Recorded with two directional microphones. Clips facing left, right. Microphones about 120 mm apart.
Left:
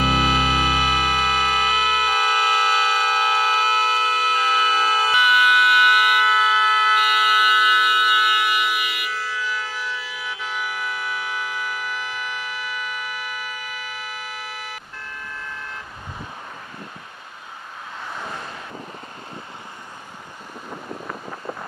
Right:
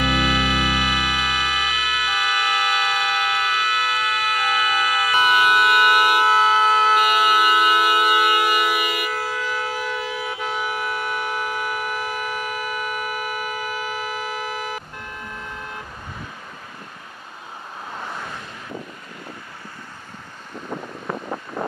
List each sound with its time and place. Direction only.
0.0 s music: 35° left (ahead or behind)
5.1 s siren: 40° right (ahead or behind)